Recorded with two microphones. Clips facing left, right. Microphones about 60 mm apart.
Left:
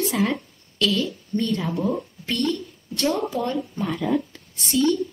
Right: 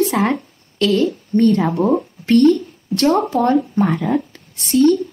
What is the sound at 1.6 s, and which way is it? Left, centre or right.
Speech, right.